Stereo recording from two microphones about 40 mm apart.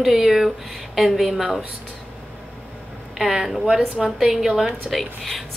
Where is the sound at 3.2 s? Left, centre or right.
Centre.